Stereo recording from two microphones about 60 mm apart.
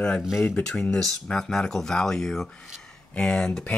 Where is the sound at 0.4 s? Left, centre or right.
Left.